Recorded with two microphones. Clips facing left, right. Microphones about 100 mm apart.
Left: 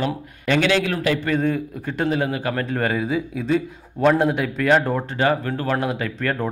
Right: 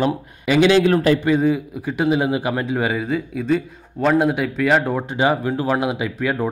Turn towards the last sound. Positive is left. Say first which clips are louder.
# right 2 dB
turn(degrees=-10)  # may be behind; listen again after turning